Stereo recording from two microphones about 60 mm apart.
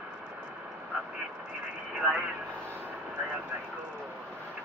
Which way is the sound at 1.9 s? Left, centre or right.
Right.